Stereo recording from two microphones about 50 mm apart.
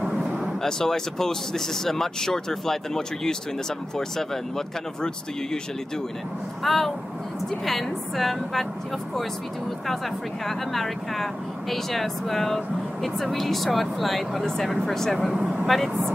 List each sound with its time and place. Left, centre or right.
0.2 s vehicle: centre
0.6 s speech: centre
6.6 s speech: centre
10.4 s speech: centre
15.3 s speech: centre
15.6 s speech: centre